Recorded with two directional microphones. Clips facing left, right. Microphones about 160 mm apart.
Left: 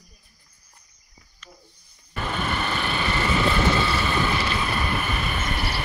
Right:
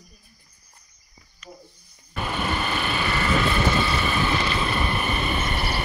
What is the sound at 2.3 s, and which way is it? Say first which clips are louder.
Vehicle: right 1 dB; 10° right (ahead or behind).